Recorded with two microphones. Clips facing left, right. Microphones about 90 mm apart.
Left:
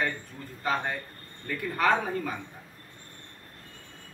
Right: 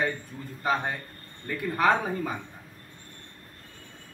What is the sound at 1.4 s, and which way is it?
Speech, 15° right (ahead or behind).